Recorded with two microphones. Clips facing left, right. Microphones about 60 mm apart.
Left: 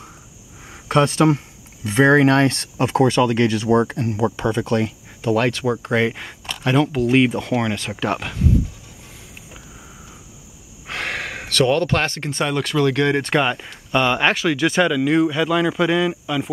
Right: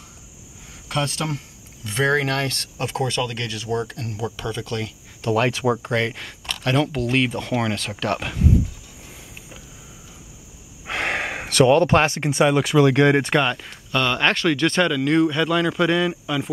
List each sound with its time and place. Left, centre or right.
0.8 s speech: left
5.3 s speech: centre
5.9 s speech: centre
10.9 s speech: right
13.3 s speech: centre